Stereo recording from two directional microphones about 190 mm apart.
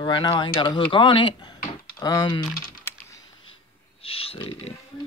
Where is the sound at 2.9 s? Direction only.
15° left (ahead or behind).